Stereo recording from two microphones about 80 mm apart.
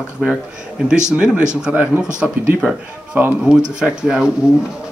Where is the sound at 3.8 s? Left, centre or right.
Centre.